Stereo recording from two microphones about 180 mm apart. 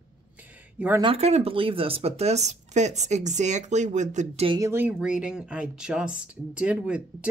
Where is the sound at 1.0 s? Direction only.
35° right (ahead or behind).